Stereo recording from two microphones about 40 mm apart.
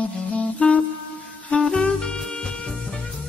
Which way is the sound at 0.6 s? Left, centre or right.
Left.